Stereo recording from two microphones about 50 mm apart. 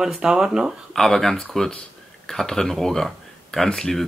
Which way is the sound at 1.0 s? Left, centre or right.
Centre.